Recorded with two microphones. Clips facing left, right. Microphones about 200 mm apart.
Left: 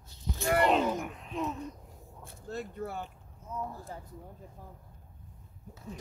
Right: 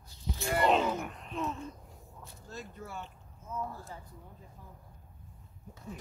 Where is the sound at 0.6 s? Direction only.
Centre (ahead or behind).